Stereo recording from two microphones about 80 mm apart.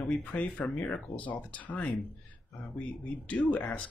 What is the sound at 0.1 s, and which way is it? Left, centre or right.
Speech, centre.